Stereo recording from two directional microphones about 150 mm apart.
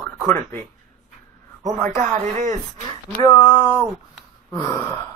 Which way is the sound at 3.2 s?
35° left (ahead or behind).